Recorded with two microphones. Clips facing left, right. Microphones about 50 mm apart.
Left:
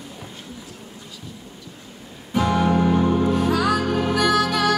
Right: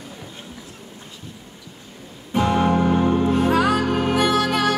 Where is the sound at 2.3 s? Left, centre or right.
Right.